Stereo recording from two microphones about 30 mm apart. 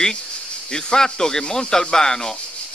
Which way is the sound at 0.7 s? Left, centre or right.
Left.